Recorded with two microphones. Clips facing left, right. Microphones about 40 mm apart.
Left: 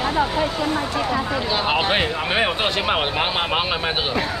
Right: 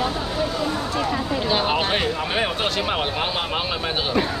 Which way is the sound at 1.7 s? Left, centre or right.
Centre.